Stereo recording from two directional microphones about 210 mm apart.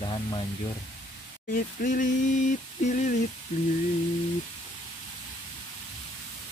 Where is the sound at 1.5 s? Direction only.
40° left (ahead or behind).